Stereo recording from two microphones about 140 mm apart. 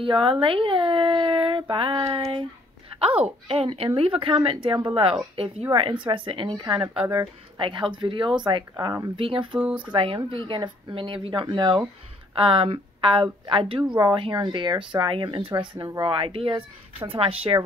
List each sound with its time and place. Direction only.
0.0 s speech: 35° right (ahead or behind)
3.3 s speech: 45° right (ahead or behind); by 9.0 s 25° right (ahead or behind)
9.1 s speech: 40° right (ahead or behind)
9.6 s speech: 10° right (ahead or behind)
9.8 s speech: 40° right (ahead or behind)